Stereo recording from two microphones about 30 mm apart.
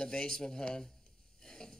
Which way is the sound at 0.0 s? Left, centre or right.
Left.